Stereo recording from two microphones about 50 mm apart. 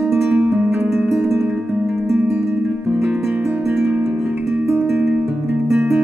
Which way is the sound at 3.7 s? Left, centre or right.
Centre.